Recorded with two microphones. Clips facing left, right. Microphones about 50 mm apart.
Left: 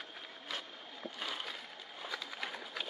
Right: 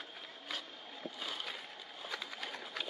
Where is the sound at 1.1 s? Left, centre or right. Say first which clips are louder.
Left 3 dB; left.